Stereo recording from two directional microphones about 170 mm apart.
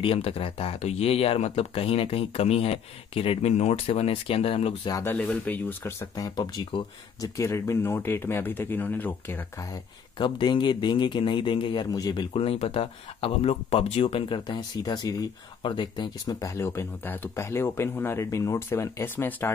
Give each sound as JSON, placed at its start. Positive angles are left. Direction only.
{"t": 0.0, "sound": "speech", "side_deg": 35}
{"t": 4.8, "sound": "speech", "side_deg": 20}
{"t": 5.1, "sound": "speech", "side_deg": 10}
{"t": 10.1, "sound": "speech", "side_deg": 25}